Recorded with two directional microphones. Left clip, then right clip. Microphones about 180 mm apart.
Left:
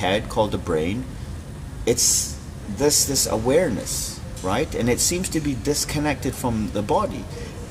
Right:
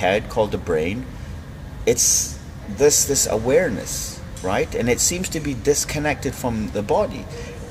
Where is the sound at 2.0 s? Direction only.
60° left (ahead or behind).